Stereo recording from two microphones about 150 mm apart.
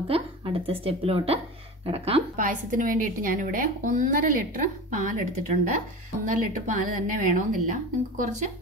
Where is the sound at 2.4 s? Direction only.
60° right (ahead or behind).